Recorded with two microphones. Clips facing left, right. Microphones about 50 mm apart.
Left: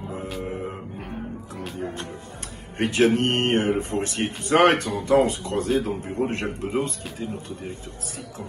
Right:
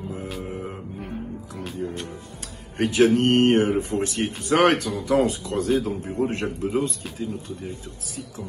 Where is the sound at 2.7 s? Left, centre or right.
Left.